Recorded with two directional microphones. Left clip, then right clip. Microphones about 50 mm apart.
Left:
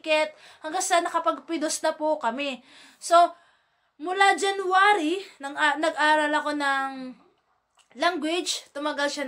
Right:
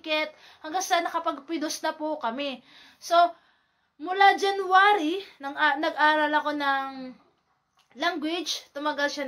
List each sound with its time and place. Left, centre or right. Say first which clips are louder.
0.0 s speech: left 4 dB; left
4.4 s speech: right 1 dB; centre
4.8 s a woman's voice: left 1 dB; left